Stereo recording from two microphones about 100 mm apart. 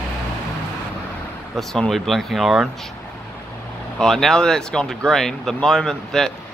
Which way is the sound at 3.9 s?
5° left (ahead or behind).